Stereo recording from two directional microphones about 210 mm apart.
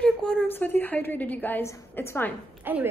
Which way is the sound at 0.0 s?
5° left (ahead or behind).